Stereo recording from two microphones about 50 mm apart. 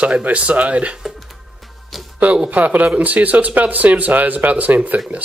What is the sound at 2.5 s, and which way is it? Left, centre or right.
Speech, right.